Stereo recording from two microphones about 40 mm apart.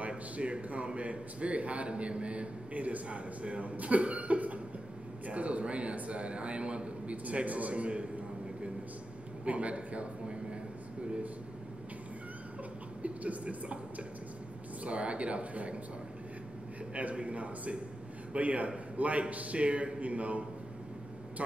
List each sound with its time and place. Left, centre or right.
0.4 s a man's voice: right
9.4 s a man's voice: right
13.0 s a woman's voice: right
16.9 s a man's voice: right